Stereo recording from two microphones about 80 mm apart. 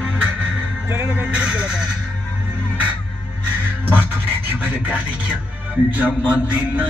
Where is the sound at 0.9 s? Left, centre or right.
Right.